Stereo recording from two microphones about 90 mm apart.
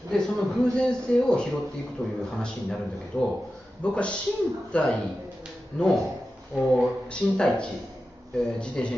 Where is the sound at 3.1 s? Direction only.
30° left (ahead or behind).